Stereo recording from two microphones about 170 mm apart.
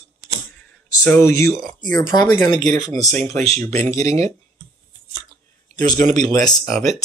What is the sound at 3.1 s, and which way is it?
Speech, 40° right (ahead or behind).